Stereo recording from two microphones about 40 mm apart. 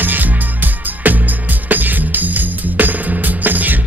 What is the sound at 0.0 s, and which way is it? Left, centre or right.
Music, right.